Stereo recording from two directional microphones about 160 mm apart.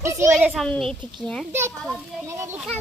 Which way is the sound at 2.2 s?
15° right (ahead or behind).